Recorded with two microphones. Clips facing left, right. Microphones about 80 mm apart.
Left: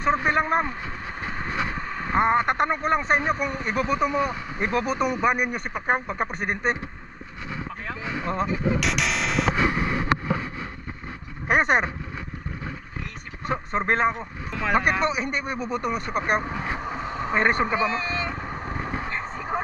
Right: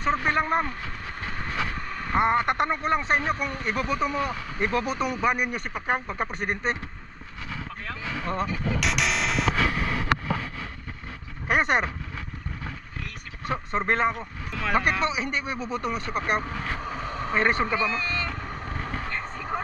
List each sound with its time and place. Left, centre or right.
0.1 s speech: centre
1.2 s vehicle: centre
2.1 s speech: centre
7.5 s a sound: centre
8.7 s music: centre
9.6 s vehicle: centre
11.4 s speech: centre
13.7 s speech: centre
17.6 s vehicle: centre